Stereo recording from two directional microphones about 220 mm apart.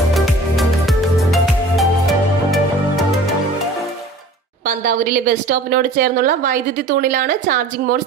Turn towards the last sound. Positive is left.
turn(degrees=-40)  # may be behind; listen again after turning